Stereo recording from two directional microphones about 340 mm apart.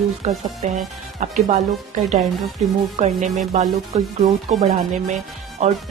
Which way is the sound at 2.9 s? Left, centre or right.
Right.